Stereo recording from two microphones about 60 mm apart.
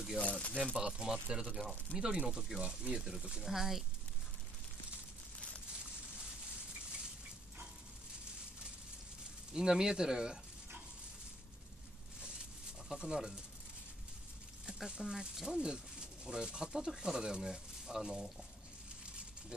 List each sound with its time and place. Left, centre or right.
0.2 s speech: centre
0.7 s speech: centre
9.5 s speech: centre
12.8 s speech: centre
14.7 s speech: centre